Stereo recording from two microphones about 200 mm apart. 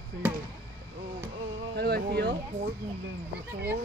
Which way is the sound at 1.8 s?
55° right (ahead or behind).